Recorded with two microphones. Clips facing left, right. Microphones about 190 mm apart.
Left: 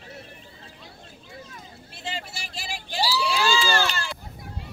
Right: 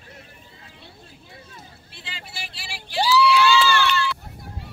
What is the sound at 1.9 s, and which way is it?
Vehicle, 45° left (ahead or behind).